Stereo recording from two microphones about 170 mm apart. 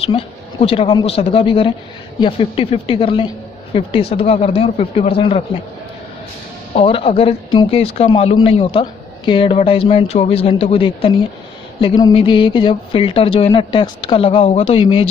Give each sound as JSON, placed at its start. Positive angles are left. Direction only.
{"t": 0.0, "sound": "speech", "side_deg": 35}
{"t": 6.7, "sound": "speech", "side_deg": 35}